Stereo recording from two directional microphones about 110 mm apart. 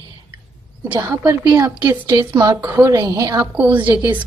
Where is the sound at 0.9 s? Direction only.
20° right (ahead or behind).